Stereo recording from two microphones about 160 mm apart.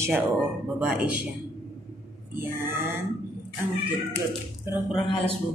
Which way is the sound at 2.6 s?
15° right (ahead or behind).